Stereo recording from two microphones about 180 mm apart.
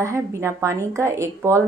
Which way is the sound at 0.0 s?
15° right (ahead or behind).